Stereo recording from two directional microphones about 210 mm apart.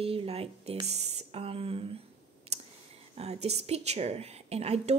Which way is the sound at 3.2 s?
30° right (ahead or behind).